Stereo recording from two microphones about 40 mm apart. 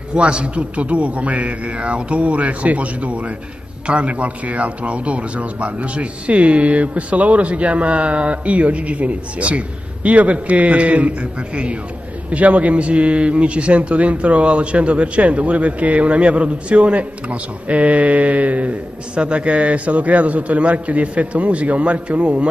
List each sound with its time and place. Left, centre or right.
0.1 s a man's voice: right